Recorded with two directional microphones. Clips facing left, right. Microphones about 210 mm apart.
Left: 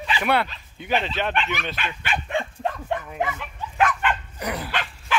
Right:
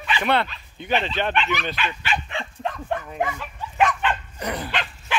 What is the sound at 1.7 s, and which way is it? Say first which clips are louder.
Speech: right 2 dB; 50° left (ahead or behind).